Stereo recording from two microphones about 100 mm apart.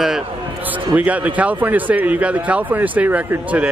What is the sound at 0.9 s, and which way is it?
Speech, 15° right (ahead or behind).